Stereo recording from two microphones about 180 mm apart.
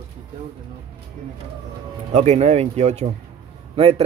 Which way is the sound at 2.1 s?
35° right (ahead or behind).